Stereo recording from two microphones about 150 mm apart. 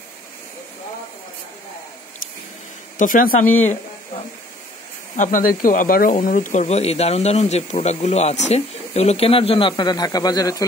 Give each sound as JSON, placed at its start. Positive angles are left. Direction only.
{"t": 3.0, "sound": "speech", "side_deg": 65}
{"t": 5.1, "sound": "speech", "side_deg": 60}